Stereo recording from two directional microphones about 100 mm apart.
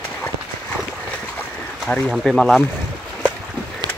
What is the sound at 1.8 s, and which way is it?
Speech, 5° left (ahead or behind).